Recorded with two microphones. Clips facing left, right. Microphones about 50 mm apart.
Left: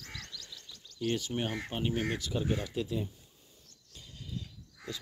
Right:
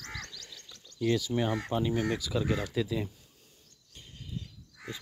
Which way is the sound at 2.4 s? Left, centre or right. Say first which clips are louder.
Right 3 dB; right.